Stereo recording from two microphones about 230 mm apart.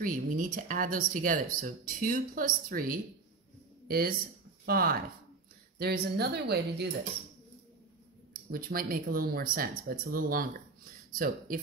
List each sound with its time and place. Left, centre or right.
0.0 s a woman's voice: right
8.3 s speech: right